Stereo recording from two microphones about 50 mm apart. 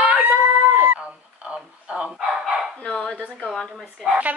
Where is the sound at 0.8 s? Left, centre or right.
Right.